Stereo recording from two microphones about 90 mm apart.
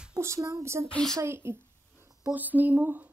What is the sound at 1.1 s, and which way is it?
Speech, 30° right (ahead or behind).